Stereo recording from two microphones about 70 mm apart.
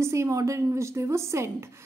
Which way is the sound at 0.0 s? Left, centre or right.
Right.